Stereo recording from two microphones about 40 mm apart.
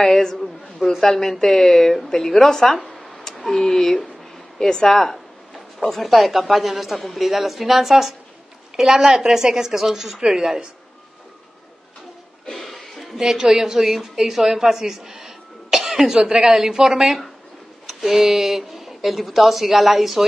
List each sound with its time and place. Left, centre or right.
0.0 s speech: centre
2.9 s a sound: centre
4.6 s a woman's voice: centre
12.4 s music: centre
13.2 s a woman's voice: centre